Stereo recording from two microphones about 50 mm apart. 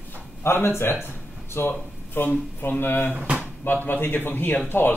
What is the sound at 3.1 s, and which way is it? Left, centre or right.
Speech, right.